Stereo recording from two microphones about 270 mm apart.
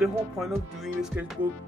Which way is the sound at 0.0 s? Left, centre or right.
Centre.